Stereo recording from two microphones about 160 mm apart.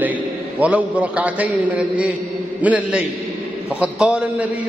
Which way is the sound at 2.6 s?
10° right (ahead or behind).